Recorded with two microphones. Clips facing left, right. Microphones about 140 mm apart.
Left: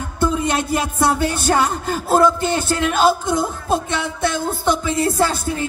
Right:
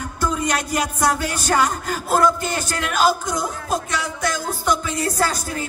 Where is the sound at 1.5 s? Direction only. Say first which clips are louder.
Even; 30° left (ahead or behind).